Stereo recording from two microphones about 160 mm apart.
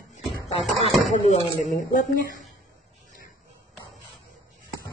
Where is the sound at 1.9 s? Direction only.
55° left (ahead or behind).